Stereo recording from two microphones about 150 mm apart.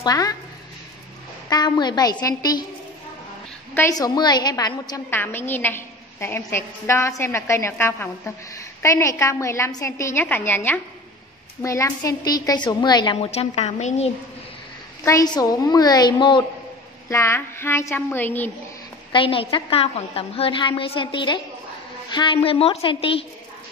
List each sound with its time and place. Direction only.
0.0 s a woman's voice: 25° left (ahead or behind)
1.5 s a woman's voice: 30° left (ahead or behind)
3.9 s a woman's voice: 25° left (ahead or behind)
5.1 s a woman's voice: 15° left (ahead or behind)
13.2 s speech: 45° left (ahead or behind)
15.0 s a woman's voice: 25° left (ahead or behind)
17.1 s a woman's voice: 15° left (ahead or behind)
19.1 s a woman's voice: 35° left (ahead or behind)